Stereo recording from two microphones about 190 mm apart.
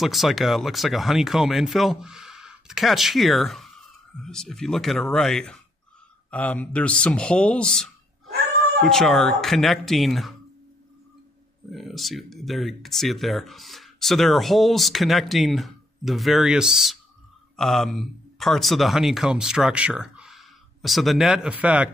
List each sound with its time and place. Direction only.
0.0 s speech: centre (ahead or behind)
11.7 s speech: centre (ahead or behind)